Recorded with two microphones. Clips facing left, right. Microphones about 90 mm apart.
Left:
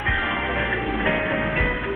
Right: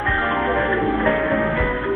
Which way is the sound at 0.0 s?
35° right (ahead or behind).